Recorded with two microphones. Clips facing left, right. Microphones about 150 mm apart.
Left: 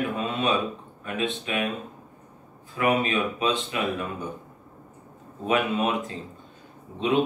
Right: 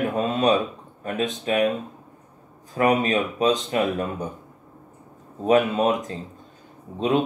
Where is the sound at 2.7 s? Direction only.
40° right (ahead or behind).